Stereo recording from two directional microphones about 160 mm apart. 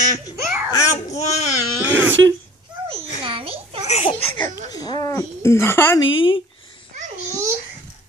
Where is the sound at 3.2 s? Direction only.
35° right (ahead or behind).